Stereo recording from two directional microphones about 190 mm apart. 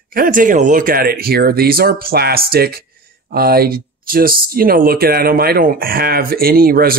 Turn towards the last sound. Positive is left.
turn(degrees=-50)  # may be behind; listen again after turning